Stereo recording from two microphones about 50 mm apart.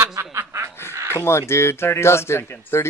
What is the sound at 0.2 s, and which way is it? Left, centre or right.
Snicker, right.